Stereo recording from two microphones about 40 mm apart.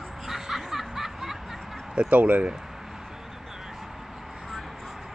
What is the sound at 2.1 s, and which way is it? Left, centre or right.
Speech, right.